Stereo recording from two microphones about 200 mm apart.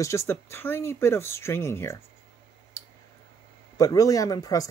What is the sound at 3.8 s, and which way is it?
Speech, 15° left (ahead or behind).